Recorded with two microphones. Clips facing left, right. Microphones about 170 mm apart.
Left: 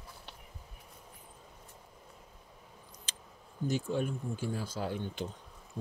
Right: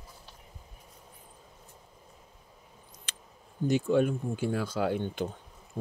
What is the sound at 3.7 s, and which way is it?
Speech, 70° right (ahead or behind).